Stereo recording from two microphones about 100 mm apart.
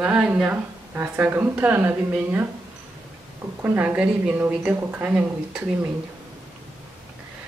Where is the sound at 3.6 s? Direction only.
15° right (ahead or behind).